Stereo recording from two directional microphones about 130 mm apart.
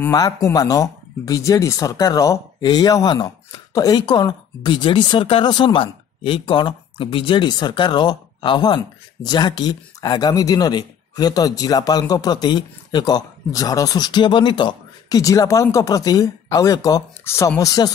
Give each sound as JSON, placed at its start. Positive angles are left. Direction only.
{"t": 0.1, "sound": "speech", "side_deg": 30}